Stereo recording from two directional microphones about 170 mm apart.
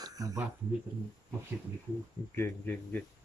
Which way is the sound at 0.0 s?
20° right (ahead or behind).